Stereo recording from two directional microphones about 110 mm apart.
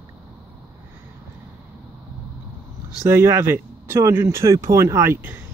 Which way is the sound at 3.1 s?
25° right (ahead or behind).